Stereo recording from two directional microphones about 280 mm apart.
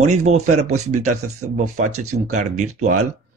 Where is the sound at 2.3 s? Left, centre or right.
Right.